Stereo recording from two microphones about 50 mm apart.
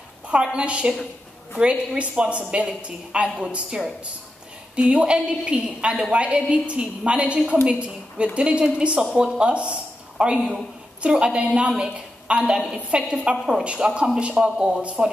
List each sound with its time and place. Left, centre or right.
0.3 s a woman's voice: centre